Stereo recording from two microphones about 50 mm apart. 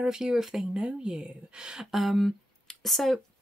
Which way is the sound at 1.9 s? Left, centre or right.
Centre.